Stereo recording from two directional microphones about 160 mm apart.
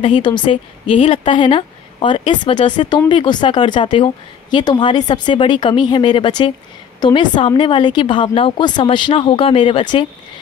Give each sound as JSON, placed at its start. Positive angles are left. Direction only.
{"t": 0.0, "sound": "a woman's voice", "side_deg": 30}